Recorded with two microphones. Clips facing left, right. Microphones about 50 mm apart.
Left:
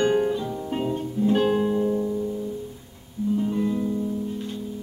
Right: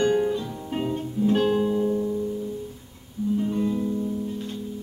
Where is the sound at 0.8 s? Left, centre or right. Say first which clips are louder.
Right 1 dB; centre.